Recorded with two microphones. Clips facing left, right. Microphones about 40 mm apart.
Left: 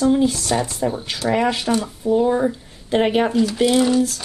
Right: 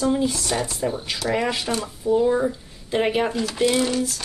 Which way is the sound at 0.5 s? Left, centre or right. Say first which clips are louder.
Left 3 dB; centre.